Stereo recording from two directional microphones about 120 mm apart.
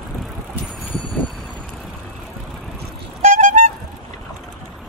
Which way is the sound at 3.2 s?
90° right.